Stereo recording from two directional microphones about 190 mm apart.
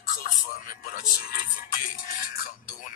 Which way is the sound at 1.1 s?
50° left (ahead or behind).